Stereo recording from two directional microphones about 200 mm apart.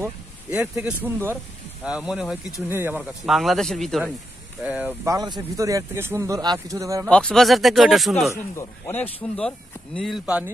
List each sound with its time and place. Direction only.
0.0 s speech: 10° right (ahead or behind)
3.0 s speech: centre (ahead or behind); by 7.1 s 15° right (ahead or behind)
7.1 s speech: 5° left (ahead or behind)
8.5 s speech: 10° left (ahead or behind)
10.2 s speech: 5° right (ahead or behind)